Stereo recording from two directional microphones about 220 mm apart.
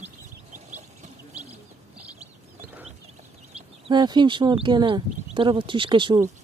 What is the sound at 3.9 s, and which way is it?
Speech, 20° right (ahead or behind).